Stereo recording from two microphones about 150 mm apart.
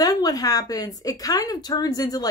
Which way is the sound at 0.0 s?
25° left (ahead or behind).